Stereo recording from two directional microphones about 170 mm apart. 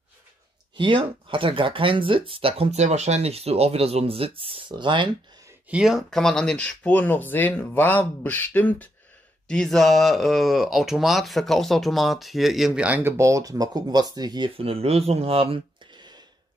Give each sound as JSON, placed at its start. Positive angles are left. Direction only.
{"t": 0.7, "sound": "speech", "side_deg": -30}
{"t": 5.7, "sound": "speech", "side_deg": -5}